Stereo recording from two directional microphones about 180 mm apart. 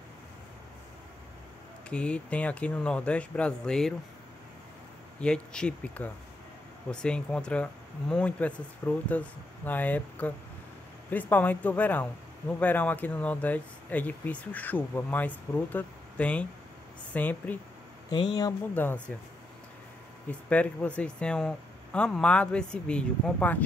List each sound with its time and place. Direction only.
1.9 s speech: 5° left (ahead or behind)
5.2 s speech: 5° left (ahead or behind)
18.1 s speech: 25° left (ahead or behind)
18.8 s speech: 10° left (ahead or behind)
20.2 s speech: 5° left (ahead or behind)